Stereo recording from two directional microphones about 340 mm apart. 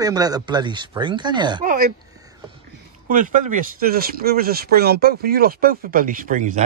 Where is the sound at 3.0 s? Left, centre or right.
Right.